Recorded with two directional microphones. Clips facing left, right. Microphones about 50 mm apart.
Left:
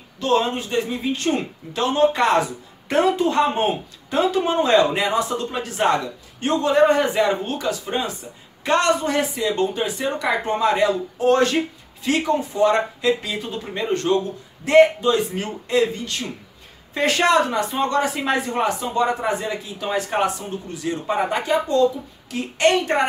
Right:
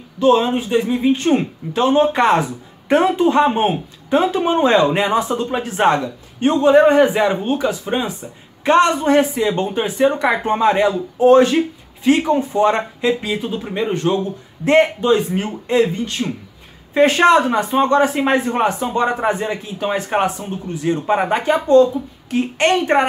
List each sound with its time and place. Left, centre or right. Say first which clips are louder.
0.2 s speech: right 6 dB; centre
14.6 s speech: even; right